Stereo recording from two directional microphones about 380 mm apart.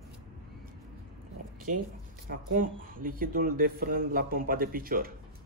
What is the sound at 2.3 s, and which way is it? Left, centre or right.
Speech, right.